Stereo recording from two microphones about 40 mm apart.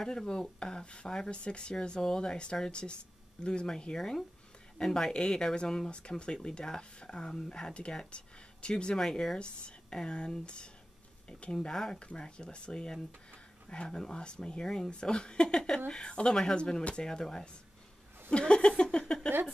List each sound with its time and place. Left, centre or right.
0.0 s a woman's voice: centre
11.7 s a woman's voice: centre
12.2 s a woman's voice: left
18.3 s a sound: left